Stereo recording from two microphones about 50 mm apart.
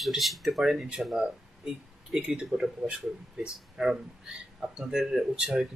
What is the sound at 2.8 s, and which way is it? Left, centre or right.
Speech, centre.